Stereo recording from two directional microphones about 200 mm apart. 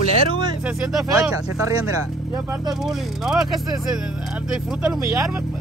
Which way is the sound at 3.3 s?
Centre (ahead or behind).